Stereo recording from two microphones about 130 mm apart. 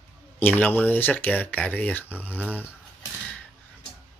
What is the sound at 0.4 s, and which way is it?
Speech, 15° left (ahead or behind).